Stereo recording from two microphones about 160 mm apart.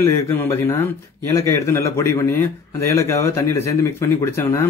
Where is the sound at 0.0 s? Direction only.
15° left (ahead or behind).